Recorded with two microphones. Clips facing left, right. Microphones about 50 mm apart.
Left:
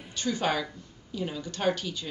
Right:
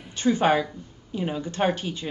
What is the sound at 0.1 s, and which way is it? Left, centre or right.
A woman's voice, right.